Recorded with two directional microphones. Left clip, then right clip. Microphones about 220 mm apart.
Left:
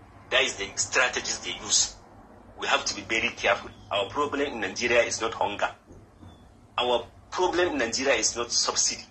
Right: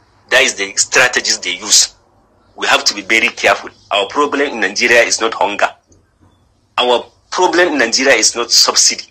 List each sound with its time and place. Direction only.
0.3 s a man's voice: 40° right (ahead or behind)
6.7 s a man's voice: 40° right (ahead or behind)